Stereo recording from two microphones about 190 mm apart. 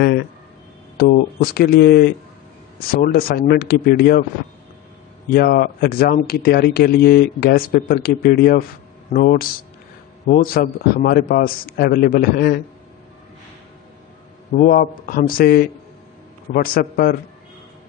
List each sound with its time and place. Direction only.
0.9 s speech: 50° left (ahead or behind)
5.3 s speech: 50° left (ahead or behind)
14.6 s speech: 50° left (ahead or behind)